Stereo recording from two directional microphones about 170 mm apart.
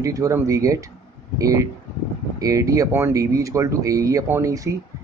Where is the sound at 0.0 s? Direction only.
20° right (ahead or behind).